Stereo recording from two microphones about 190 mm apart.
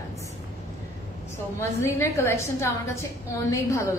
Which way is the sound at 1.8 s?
15° left (ahead or behind).